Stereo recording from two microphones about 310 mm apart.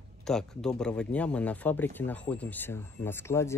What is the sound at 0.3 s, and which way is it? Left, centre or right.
Speech, centre.